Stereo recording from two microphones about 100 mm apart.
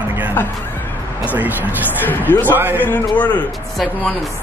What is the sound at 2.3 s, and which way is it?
A man's voice, 15° left (ahead or behind).